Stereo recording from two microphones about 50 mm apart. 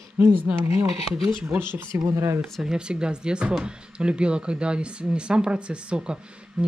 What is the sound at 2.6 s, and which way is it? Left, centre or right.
Speech, centre.